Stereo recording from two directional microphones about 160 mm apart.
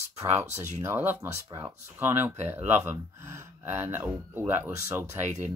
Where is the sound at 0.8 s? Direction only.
10° right (ahead or behind).